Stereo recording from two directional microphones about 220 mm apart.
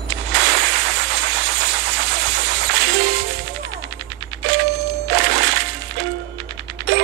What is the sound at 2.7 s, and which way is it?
Music, 55° right (ahead or behind).